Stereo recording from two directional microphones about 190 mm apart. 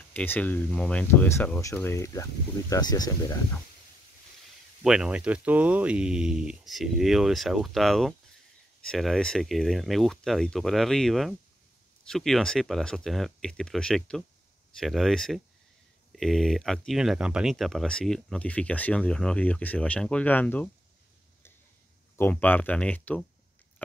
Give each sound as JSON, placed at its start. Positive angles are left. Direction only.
{"t": 0.1, "sound": "speech", "side_deg": 10}
{"t": 4.8, "sound": "speech", "side_deg": -5}
{"t": 22.1, "sound": "speech", "side_deg": 10}